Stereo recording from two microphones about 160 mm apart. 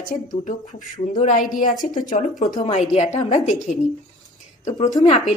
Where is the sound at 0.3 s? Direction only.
55° left (ahead or behind).